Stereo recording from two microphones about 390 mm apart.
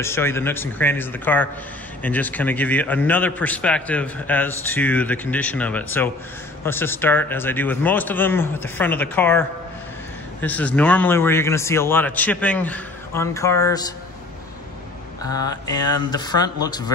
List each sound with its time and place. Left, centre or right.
0.0 s a man's voice: centre
10.4 s a man's voice: centre
15.2 s speech: centre